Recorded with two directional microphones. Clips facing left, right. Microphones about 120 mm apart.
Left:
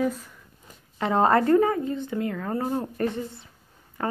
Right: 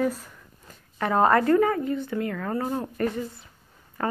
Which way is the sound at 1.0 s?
25° left (ahead or behind).